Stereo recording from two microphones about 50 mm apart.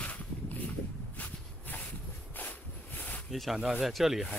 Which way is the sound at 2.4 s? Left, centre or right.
Left.